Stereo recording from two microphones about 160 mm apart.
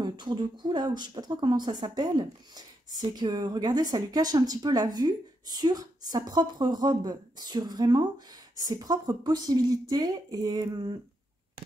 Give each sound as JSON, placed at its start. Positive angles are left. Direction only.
{"t": 0.0, "sound": "speech", "side_deg": -30}